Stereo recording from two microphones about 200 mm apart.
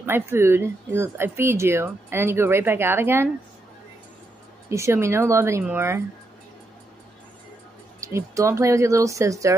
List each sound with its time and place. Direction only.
0.0 s speech: 10° right (ahead or behind)
4.6 s speech: 15° right (ahead or behind)
8.0 s speech: 15° right (ahead or behind)